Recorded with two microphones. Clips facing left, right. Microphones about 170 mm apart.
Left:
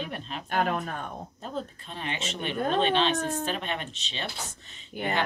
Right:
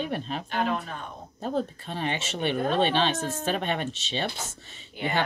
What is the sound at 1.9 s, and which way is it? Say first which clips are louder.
Speech: right 6 dB; 55° right (ahead or behind).